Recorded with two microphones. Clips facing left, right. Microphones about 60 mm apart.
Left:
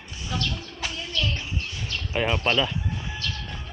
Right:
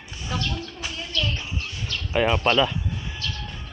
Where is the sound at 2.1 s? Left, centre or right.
Centre.